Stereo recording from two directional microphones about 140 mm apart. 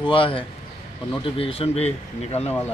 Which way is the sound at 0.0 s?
40° left (ahead or behind).